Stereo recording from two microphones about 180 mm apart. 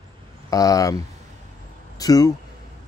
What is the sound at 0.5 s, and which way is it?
Speech, 20° left (ahead or behind).